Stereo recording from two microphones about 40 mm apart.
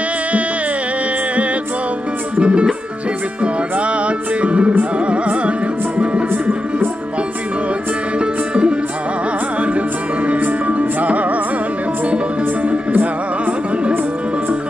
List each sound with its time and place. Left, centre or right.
2.3 s speech: right
3.7 s music: right
8.2 s music: right
12.9 s music: right